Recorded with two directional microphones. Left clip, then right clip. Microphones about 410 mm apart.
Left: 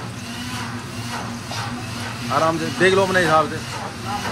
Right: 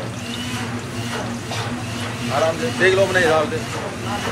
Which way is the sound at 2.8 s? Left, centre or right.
Centre.